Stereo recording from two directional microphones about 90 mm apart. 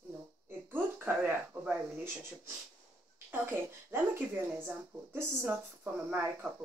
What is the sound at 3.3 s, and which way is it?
Speech, 25° right (ahead or behind).